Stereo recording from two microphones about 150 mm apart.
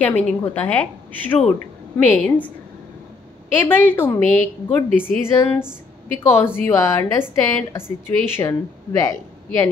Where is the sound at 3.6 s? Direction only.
15° left (ahead or behind).